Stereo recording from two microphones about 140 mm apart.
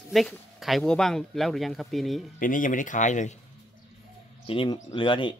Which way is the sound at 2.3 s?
75° left (ahead or behind).